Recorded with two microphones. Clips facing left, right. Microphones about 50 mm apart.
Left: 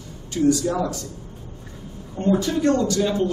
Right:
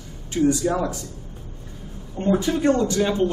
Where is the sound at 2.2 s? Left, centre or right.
Centre.